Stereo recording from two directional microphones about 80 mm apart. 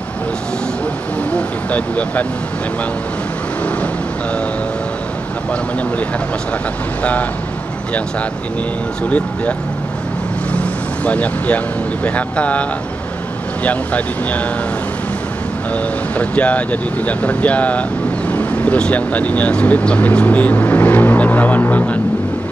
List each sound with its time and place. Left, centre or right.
1.3 s vehicle: centre
5.5 s speech: centre
9.1 s speech: centre
11.1 s speech: centre
13.7 s speech: centre
15.7 s speech: centre